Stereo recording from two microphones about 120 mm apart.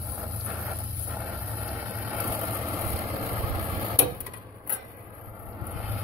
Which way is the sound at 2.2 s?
25° right (ahead or behind).